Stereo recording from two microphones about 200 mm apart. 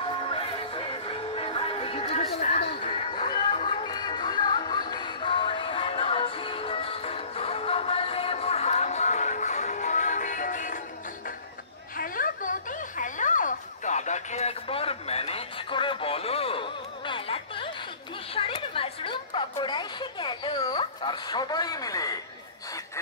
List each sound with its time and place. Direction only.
0.0 s music: 25° left (ahead or behind)
3.2 s music: 25° left (ahead or behind); by 10.8 s 40° left (ahead or behind)
12.0 s a sound: 45° left (ahead or behind); by 22.1 s 15° left (ahead or behind)